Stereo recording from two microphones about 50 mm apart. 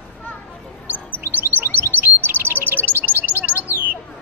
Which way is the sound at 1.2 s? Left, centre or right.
Right.